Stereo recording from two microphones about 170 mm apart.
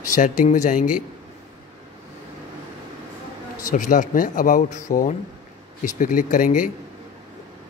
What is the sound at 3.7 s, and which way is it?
Speech, 50° left (ahead or behind).